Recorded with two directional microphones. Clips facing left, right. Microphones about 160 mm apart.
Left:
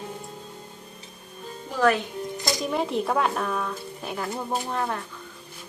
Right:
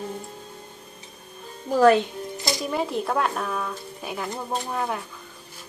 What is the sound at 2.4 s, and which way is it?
Speech, centre (ahead or behind).